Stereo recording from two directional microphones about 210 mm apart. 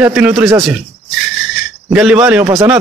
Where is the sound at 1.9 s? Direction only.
5° right (ahead or behind).